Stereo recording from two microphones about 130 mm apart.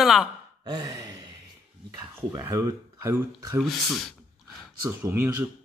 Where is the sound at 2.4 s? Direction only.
20° right (ahead or behind).